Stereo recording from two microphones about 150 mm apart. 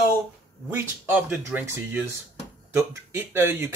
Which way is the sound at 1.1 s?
10° right (ahead or behind).